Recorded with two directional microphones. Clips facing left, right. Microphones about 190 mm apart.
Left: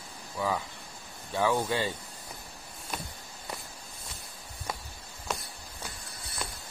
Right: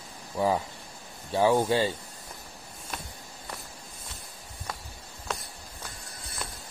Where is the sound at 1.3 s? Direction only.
30° right (ahead or behind).